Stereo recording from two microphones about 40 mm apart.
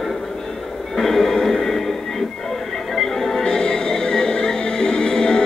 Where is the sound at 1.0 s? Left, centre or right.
Centre.